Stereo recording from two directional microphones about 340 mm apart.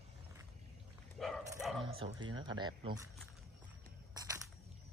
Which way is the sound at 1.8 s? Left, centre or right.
Centre.